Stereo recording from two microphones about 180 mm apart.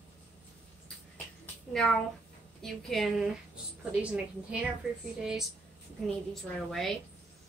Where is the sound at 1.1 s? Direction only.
5° left (ahead or behind).